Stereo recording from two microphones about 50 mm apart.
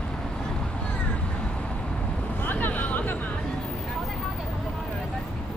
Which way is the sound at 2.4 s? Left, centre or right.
Left.